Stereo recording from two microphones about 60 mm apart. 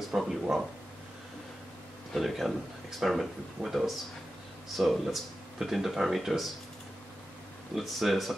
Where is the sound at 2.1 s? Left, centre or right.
Centre.